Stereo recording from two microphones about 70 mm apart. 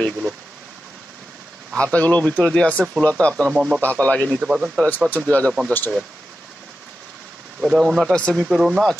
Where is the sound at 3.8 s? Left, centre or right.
Left.